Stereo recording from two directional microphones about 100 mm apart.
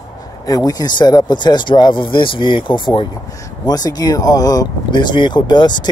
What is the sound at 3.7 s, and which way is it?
Speech, 40° left (ahead or behind).